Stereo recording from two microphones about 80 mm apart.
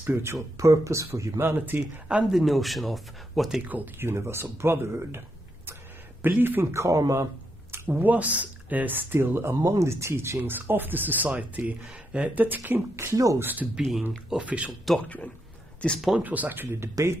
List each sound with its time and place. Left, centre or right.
0.0 s speech: right
1.4 s speech: right
2.3 s speech: centre
3.6 s speech: right
6.2 s speech: right
7.7 s speech: right
9.6 s speech: right
12.9 s speech: right
13.4 s speech: right
15.0 s speech: centre
16.2 s speech: right